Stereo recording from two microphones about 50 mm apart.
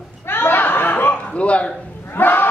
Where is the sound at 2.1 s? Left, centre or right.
Left.